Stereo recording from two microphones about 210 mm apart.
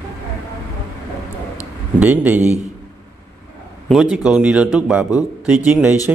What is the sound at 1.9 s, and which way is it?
Speech, 10° right (ahead or behind).